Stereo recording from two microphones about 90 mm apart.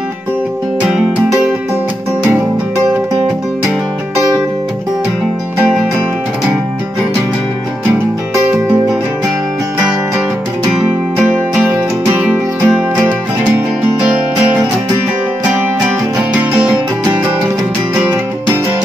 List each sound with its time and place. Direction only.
12.2 s music: 10° right (ahead or behind)
16.6 s music: 15° right (ahead or behind)